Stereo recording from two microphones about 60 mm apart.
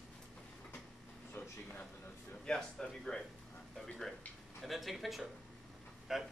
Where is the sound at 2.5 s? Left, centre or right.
Centre.